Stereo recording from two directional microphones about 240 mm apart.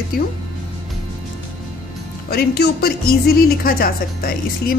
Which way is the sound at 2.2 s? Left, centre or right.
Left.